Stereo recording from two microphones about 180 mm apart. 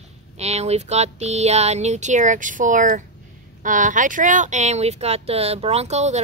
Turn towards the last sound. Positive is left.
turn(degrees=-40)  # may be behind; listen again after turning